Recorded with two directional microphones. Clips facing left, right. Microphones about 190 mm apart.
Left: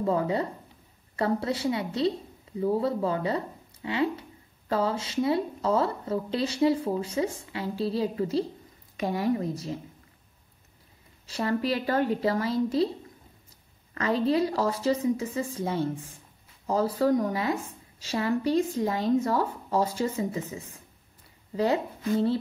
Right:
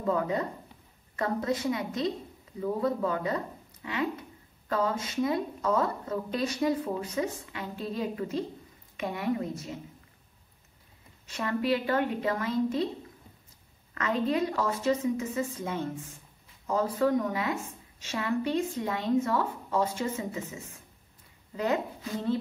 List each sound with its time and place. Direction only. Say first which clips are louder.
0.0 s a woman's voice: left 2 dB; 30° left (ahead or behind)
11.2 s a woman's voice: left 1 dB; 35° left (ahead or behind)
13.9 s a woman's voice: left 3 dB; 35° left (ahead or behind)